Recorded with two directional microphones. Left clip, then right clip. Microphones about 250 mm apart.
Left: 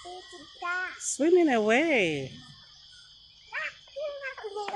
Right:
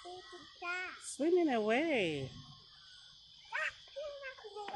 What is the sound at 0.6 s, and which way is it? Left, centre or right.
Speech, right.